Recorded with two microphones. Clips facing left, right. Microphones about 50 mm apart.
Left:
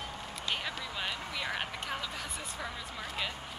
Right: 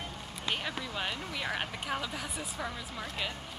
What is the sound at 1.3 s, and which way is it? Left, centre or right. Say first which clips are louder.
Speech: right 1 dB; centre.